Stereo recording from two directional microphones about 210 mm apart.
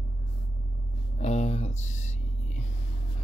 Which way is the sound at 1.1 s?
30° left (ahead or behind).